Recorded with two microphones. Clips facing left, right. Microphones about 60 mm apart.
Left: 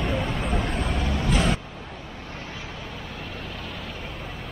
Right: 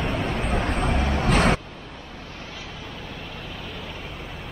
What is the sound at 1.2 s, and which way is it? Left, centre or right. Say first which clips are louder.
Vehicle: right 4 dB; right.